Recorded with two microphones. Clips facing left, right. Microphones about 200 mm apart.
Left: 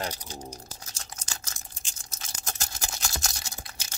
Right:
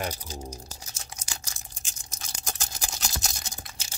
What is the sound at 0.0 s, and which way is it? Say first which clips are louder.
Typing: right 1 dB; 10° right (ahead or behind).